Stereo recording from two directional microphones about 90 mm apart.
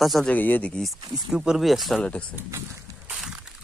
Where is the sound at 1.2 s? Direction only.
10° right (ahead or behind).